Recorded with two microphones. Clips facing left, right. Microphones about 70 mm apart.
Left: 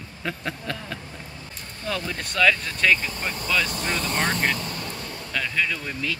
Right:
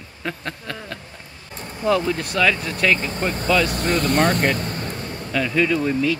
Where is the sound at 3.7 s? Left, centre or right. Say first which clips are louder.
Right 7 dB; right.